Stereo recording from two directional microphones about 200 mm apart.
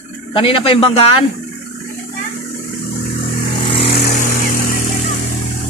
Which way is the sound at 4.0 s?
40° left (ahead or behind).